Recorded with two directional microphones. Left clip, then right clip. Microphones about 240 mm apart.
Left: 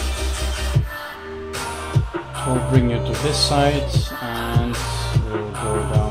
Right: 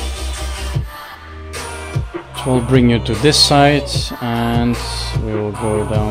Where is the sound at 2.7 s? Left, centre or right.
Right.